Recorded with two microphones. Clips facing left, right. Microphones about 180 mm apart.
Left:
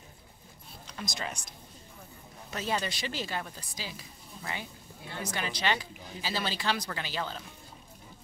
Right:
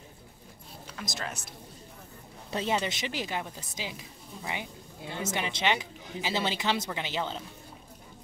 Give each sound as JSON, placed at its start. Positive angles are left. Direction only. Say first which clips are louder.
{"t": 0.9, "sound": "speech", "louder": "even", "side_deg": 0}
{"t": 2.5, "sound": "speech", "louder": "right 3 dB", "side_deg": -25}